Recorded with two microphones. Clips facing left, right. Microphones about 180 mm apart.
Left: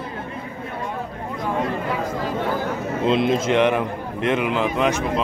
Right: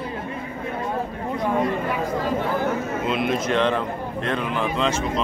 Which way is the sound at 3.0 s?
30° left (ahead or behind).